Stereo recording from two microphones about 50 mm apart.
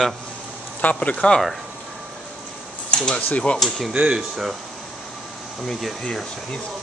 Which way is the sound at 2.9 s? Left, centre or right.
Centre.